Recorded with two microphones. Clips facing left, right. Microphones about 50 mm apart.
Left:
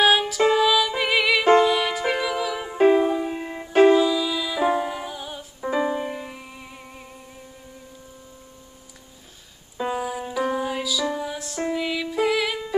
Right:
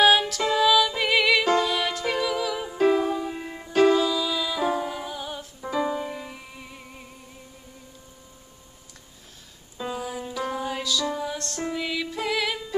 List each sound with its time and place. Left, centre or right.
0.0 s music: centre
1.4 s music: left
1.7 s music: centre
2.7 s music: left; by 4.6 s centre
4.6 s music: centre
5.7 s music: left; by 7.1 s centre
9.8 s music: left
10.0 s music: centre